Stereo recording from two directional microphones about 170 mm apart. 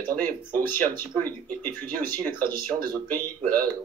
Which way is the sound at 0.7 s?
10° left (ahead or behind).